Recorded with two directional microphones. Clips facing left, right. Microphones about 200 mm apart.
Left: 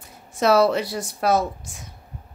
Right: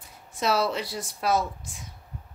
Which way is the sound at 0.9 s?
70° left (ahead or behind).